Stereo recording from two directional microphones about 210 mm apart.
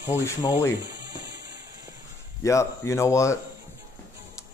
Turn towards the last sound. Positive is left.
turn(degrees=15)  # may be behind; listen again after turning